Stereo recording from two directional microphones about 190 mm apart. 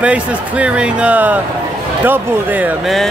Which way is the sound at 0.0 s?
5° right (ahead or behind).